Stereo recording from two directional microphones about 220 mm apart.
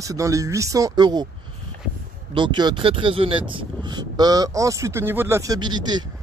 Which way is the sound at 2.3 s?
20° right (ahead or behind).